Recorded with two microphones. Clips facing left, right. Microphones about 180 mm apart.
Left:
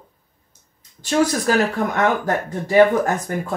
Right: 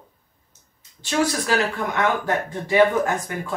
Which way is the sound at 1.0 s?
45° left (ahead or behind).